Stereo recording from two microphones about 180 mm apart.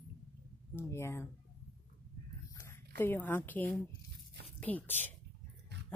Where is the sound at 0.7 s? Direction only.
15° left (ahead or behind).